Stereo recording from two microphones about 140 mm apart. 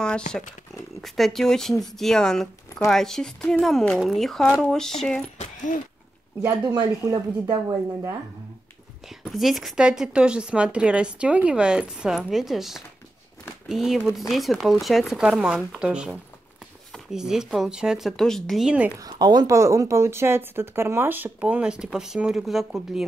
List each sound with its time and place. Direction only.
1.0 s speech: centre (ahead or behind)
6.6 s a woman's voice: 30° right (ahead or behind)
9.2 s speech: centre (ahead or behind)
18.9 s speech: 30° right (ahead or behind); by 23.0 s centre (ahead or behind)